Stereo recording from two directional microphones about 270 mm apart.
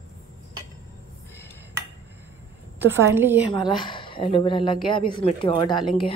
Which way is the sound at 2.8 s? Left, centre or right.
Centre.